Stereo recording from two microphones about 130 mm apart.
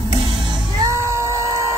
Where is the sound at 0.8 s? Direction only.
20° right (ahead or behind).